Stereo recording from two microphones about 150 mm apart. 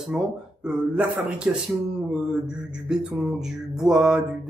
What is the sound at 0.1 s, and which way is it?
A man's voice, 5° right (ahead or behind).